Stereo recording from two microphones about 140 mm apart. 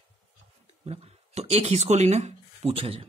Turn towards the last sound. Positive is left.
turn(degrees=-45)  # may be behind; listen again after turning